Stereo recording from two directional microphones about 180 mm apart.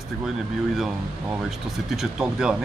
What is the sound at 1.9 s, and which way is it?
Speech, 5° right (ahead or behind).